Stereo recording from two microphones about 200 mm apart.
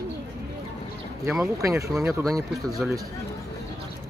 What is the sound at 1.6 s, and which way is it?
Speech, 15° right (ahead or behind).